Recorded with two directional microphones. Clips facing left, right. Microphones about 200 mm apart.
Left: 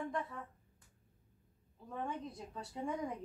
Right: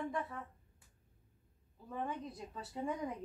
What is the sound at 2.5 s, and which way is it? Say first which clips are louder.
Speech: even; centre (ahead or behind).